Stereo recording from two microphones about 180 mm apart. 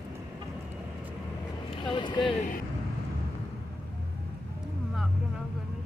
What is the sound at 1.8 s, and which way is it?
Speech, 25° left (ahead or behind).